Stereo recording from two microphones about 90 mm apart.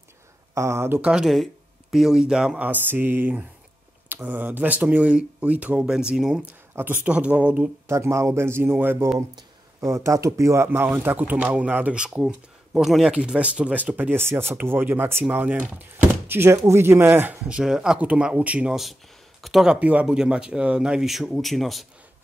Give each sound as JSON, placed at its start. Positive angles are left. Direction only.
{"t": 0.6, "sound": "speech", "side_deg": -30}
{"t": 1.0, "sound": "speech", "side_deg": -5}
{"t": 2.7, "sound": "speech", "side_deg": -20}
{"t": 6.7, "sound": "speech", "side_deg": -20}
{"t": 7.8, "sound": "speech", "side_deg": -30}
{"t": 19.4, "sound": "speech", "side_deg": -5}